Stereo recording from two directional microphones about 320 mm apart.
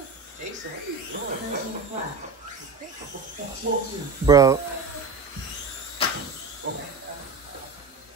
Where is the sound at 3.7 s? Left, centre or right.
Right.